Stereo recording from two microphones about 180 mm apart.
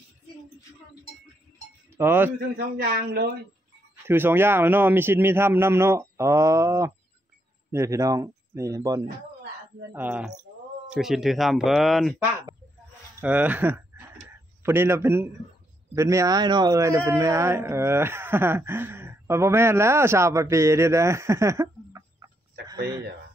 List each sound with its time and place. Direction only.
2.0 s a man's voice: 10° right (ahead or behind)
2.5 s speech: 60° right (ahead or behind)
4.1 s a man's voice: 10° right (ahead or behind)
9.0 s a sound: 70° right (ahead or behind)
9.9 s a man's voice: 10° right (ahead or behind)